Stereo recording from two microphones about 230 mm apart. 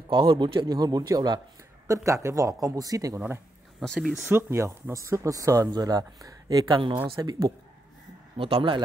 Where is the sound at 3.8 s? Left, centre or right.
Centre.